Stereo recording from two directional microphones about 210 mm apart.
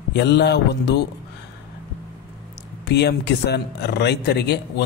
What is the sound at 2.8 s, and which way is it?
Speech, 55° left (ahead or behind).